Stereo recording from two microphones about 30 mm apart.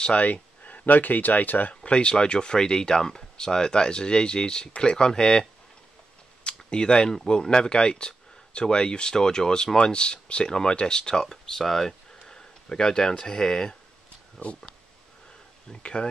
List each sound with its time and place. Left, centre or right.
0.1 s speech: left
1.9 s speech: left
11.2 s speech: centre
12.3 s a sound: left
13.2 s speech: left
14.4 s speech: left
15.8 s speech: left